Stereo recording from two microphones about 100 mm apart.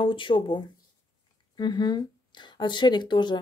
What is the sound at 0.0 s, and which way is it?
Speech, 55° left (ahead or behind).